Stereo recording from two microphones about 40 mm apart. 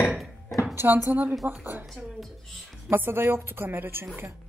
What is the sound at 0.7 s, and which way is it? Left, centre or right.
Speech, right.